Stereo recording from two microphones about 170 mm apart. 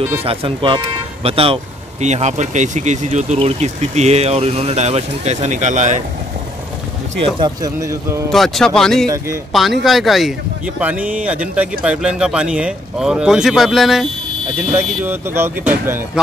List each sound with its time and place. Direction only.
0.2 s speech: 35° right (ahead or behind)
7.3 s speech: 25° right (ahead or behind)
8.3 s speech: centre (ahead or behind)
14.7 s speech: 15° right (ahead or behind)